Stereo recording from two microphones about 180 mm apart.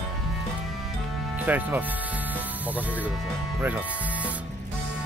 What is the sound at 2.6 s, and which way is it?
Speech, 10° right (ahead or behind).